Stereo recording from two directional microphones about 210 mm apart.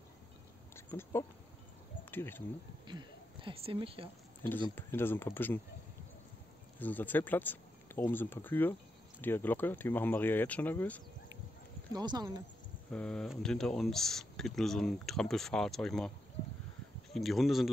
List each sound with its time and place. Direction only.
0.7 s a sound: 10° left (ahead or behind)
2.0 s speech: 10° left (ahead or behind)
2.9 s speech: 20° right (ahead or behind)
4.7 s speech: 10° left (ahead or behind)
6.8 s speech: 10° left (ahead or behind)
11.9 s speech: 20° right (ahead or behind)
12.9 s speech: 5° left (ahead or behind)
17.1 s speech: centre (ahead or behind)